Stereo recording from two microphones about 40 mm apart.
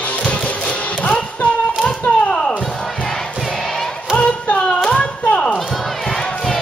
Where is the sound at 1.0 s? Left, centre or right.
Left.